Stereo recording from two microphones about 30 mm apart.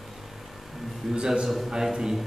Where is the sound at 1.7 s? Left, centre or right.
Right.